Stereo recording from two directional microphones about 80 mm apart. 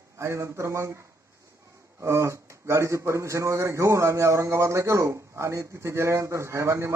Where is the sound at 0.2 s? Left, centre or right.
Right.